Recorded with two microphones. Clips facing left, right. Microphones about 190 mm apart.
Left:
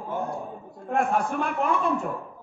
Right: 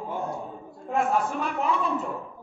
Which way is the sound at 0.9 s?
55° left (ahead or behind).